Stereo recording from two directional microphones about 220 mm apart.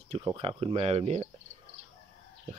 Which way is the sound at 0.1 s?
25° right (ahead or behind).